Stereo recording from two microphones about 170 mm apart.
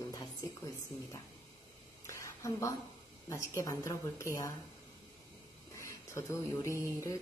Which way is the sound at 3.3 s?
15° left (ahead or behind).